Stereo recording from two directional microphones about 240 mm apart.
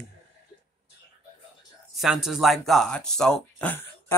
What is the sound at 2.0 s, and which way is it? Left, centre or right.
Speech, centre.